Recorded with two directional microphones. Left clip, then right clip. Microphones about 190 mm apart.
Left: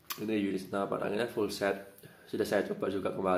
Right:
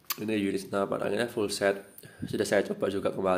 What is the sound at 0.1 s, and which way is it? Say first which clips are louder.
Speech: right 3 dB; 30° right (ahead or behind).